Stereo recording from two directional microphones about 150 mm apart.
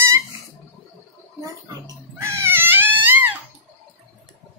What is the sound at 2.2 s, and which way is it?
Baby cry, 15° right (ahead or behind).